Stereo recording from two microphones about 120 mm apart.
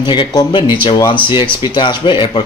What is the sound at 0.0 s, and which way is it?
Speech, 40° left (ahead or behind).